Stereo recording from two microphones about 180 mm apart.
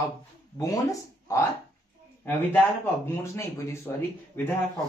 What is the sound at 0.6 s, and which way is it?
Speech, 20° left (ahead or behind).